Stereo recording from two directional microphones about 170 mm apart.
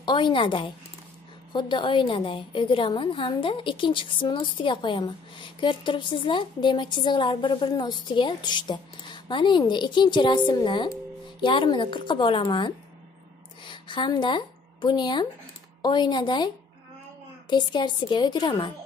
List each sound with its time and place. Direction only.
0.0 s a woman's voice: 25° left (ahead or behind)